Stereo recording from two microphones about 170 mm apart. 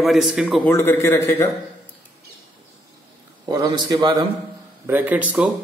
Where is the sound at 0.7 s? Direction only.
15° left (ahead or behind).